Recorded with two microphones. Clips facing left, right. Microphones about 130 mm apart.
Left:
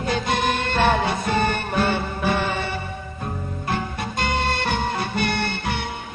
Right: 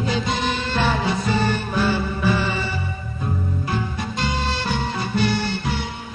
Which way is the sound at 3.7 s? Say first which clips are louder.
Left 3 dB; 60° left (ahead or behind).